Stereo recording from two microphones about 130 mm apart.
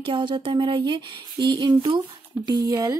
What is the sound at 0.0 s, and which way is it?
A woman's voice, 40° right (ahead or behind).